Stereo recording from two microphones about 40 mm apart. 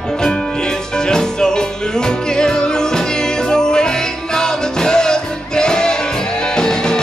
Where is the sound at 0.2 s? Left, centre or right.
Centre.